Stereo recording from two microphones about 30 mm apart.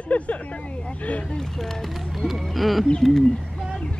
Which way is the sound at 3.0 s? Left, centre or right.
Centre.